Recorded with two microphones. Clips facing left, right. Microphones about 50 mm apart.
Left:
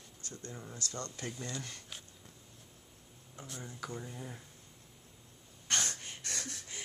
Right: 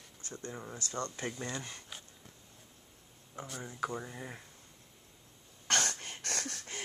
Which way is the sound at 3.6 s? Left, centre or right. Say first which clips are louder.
Right 6 dB; right.